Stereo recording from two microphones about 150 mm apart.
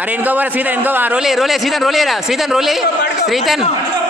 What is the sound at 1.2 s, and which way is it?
Speech, centre (ahead or behind).